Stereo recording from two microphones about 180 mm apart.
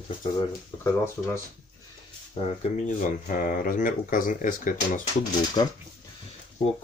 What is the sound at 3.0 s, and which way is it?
Speech, 45° left (ahead or behind).